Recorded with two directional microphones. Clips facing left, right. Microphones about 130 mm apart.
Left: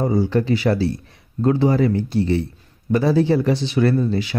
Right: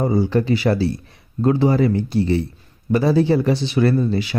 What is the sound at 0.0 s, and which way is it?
Speech, 10° right (ahead or behind).